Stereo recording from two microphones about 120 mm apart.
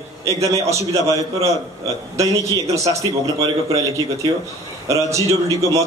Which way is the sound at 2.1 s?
25° right (ahead or behind).